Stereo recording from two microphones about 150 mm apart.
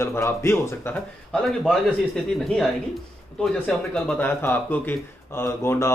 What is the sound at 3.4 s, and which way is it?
Speech, 5° left (ahead or behind).